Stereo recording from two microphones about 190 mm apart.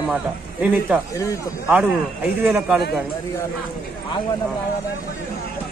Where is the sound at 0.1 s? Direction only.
5° right (ahead or behind).